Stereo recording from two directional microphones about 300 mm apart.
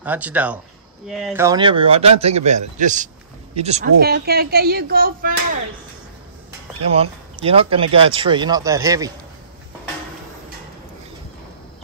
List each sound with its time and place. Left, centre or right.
0.0 s a man's voice: centre; by 5.3 s right
6.9 s speech: centre